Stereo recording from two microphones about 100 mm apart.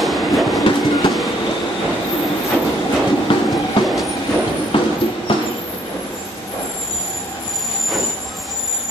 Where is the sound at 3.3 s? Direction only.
55° left (ahead or behind).